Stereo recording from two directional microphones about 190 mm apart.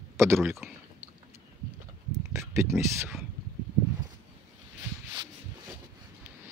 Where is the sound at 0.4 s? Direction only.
Centre (ahead or behind).